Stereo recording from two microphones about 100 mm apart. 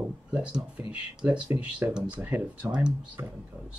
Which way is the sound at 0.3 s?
10° right (ahead or behind).